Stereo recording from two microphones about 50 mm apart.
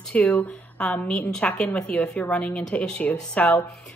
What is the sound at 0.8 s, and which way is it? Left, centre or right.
A woman's voice, centre.